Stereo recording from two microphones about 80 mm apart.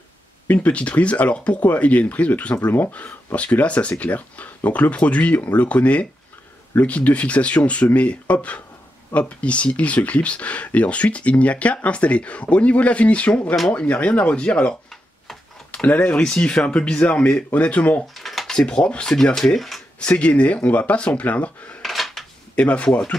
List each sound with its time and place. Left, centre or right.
0.5 s speech: centre
18.1 s speech: centre
20.1 s speech: centre
21.8 s a sound: centre
22.6 s speech: centre